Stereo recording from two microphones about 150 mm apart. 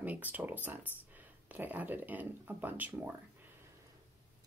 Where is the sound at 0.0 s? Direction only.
10° right (ahead or behind).